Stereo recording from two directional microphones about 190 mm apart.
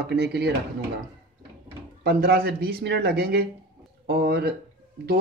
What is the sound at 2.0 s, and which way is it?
Speech, 55° right (ahead or behind).